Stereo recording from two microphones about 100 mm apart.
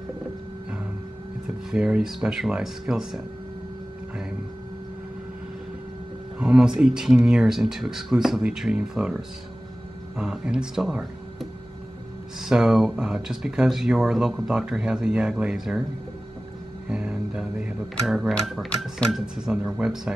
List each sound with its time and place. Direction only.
1.7 s speech: 5° right (ahead or behind)
6.4 s speech: 5° right (ahead or behind)
16.8 s speech: 5° right (ahead or behind)